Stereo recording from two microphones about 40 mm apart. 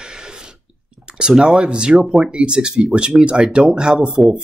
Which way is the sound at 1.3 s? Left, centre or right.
Centre.